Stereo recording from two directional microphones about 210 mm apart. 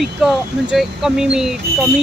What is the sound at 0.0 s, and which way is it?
Speech, centre (ahead or behind).